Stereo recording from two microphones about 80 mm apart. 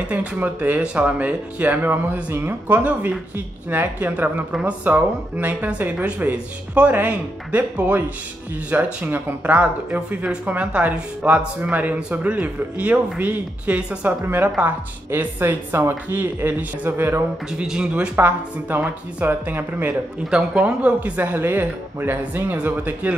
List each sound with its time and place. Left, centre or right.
0.0 s speech: centre
4.5 s speech: centre
14.2 s speech: right
17.5 s speech: centre
18.1 s speech: right
20.2 s speech: centre
21.2 s speech: right